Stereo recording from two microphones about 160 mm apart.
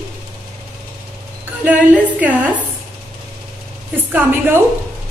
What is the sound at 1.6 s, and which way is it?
Speech, 10° right (ahead or behind).